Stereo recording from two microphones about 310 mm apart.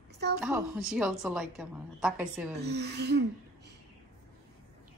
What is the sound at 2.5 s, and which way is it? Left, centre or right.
Speech, right.